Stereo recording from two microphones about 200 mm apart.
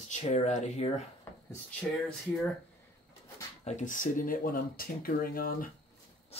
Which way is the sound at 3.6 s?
35° left (ahead or behind).